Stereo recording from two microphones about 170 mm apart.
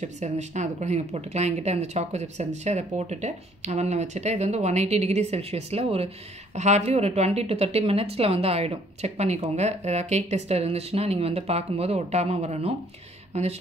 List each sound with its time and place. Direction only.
0.0 s a woman's voice: 40° right (ahead or behind)